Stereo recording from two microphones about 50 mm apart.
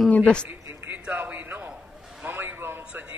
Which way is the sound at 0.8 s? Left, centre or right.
Right.